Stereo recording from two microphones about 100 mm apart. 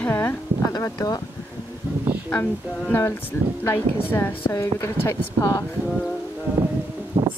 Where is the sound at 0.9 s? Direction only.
40° left (ahead or behind).